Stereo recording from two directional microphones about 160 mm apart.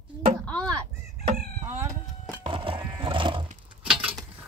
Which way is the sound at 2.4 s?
35° right (ahead or behind).